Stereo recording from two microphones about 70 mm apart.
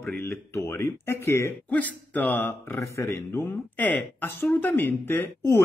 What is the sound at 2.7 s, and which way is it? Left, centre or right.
Speech, left.